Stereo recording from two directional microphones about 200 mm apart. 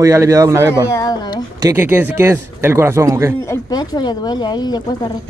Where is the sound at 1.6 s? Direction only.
10° right (ahead or behind).